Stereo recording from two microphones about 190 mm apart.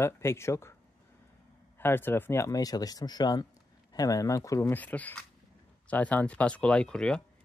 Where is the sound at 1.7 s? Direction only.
10° left (ahead or behind).